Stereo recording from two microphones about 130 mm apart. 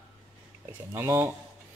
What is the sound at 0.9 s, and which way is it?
Speech, 15° right (ahead or behind).